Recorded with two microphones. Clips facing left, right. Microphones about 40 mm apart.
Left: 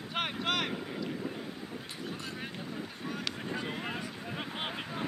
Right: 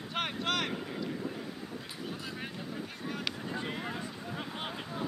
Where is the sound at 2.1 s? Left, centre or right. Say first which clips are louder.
Even; centre.